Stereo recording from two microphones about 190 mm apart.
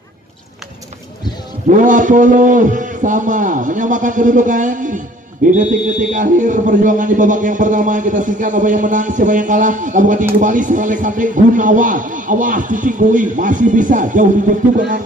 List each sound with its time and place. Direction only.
1.8 s a man's voice: 40° right (ahead or behind)